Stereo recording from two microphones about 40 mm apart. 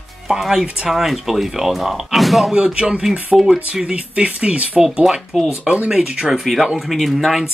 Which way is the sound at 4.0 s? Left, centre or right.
Right.